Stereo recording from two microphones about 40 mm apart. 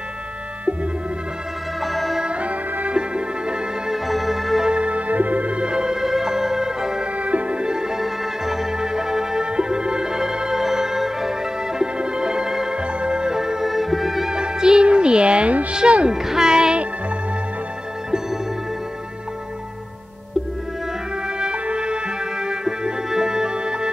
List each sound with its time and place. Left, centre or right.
1.8 s music: centre
2.2 s music: right
3.9 s music: centre
4.6 s music: right
7.2 s music: right
7.6 s music: centre
14.3 s music: centre
16.1 s music: centre
21.4 s music: right